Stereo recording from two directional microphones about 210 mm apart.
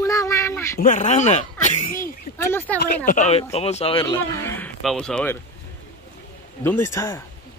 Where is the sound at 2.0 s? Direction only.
10° left (ahead or behind).